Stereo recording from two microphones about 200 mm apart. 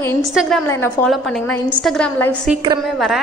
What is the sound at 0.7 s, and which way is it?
A woman's voice, 10° left (ahead or behind).